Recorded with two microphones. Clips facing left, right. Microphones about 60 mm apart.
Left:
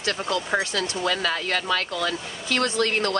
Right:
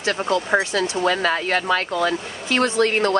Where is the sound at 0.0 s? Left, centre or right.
Right.